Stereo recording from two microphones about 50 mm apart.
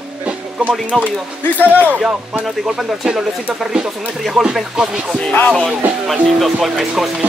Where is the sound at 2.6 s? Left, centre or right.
Centre.